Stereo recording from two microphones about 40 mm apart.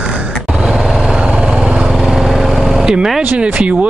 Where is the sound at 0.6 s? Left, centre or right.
Centre.